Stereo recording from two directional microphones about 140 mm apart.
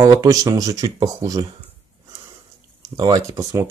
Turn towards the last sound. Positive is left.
turn(degrees=-25)  # may be behind; listen again after turning